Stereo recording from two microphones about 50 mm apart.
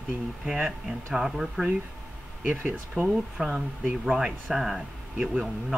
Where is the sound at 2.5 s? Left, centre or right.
Right.